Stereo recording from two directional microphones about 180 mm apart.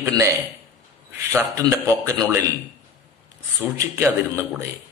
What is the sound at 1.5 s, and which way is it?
Speech, 20° right (ahead or behind).